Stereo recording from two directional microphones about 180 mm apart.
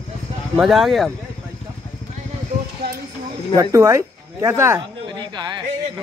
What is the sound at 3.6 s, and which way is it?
Speech, 15° right (ahead or behind).